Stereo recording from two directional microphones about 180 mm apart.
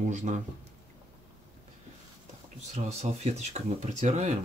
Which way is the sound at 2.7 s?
35° right (ahead or behind).